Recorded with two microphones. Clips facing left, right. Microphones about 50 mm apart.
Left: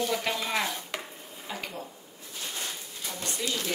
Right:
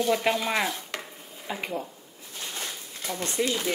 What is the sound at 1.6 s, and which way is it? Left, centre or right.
Speech, right.